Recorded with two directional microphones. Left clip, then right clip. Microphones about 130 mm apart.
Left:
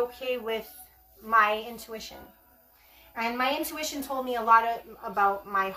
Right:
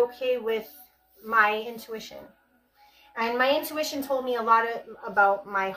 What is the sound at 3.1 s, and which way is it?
Speech, 15° left (ahead or behind).